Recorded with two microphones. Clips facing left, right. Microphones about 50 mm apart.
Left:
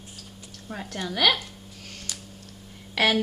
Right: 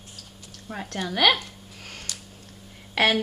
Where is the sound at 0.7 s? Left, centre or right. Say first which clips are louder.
Right 2 dB; centre.